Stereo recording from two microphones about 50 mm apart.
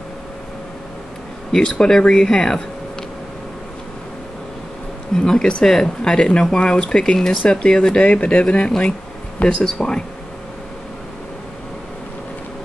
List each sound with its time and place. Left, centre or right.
1.5 s speech: centre
5.1 s speech: centre